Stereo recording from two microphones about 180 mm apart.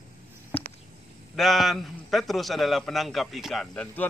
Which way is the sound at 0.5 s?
10° left (ahead or behind).